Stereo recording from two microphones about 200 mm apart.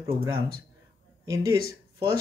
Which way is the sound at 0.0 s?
15° right (ahead or behind).